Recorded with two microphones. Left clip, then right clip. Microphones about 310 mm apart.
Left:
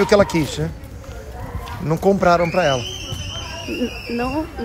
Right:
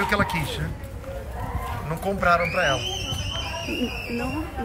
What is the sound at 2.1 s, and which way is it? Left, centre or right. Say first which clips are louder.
Speech: left 2 dB; centre.